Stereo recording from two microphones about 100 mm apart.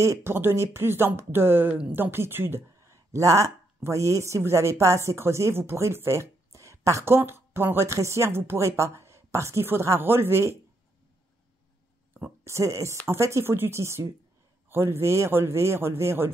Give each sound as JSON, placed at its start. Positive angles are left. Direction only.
{"t": 0.0, "sound": "speech", "side_deg": -25}
{"t": 12.4, "sound": "speech", "side_deg": -30}